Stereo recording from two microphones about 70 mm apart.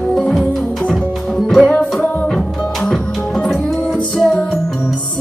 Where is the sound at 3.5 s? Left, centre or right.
Centre.